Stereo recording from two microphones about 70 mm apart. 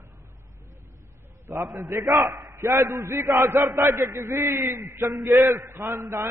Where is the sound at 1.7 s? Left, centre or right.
Right.